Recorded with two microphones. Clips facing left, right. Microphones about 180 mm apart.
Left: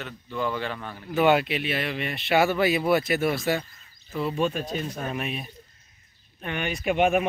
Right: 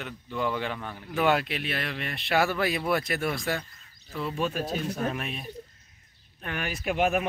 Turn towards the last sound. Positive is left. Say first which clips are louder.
# left 4 dB
turn(degrees=0)  # may be behind; listen again after turning